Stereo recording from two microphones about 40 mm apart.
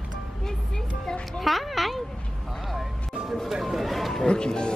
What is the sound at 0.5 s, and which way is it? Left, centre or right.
Music, centre.